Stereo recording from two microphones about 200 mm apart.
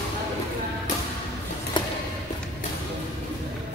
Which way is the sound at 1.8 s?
25° left (ahead or behind).